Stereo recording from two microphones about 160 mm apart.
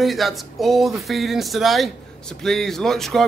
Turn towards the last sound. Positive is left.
turn(degrees=0)  # may be behind; listen again after turning